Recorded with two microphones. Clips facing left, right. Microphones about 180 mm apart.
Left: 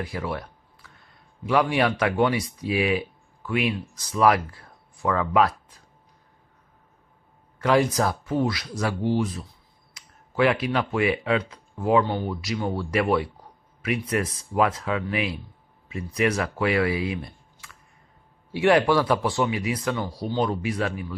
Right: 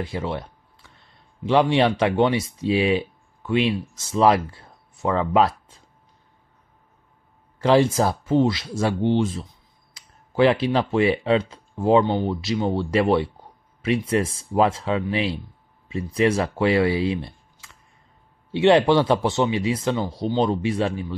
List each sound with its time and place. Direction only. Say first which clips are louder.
0.0 s speech: right 2 dB; 25° right (ahead or behind)
7.6 s speech: right 3 dB; 30° right (ahead or behind)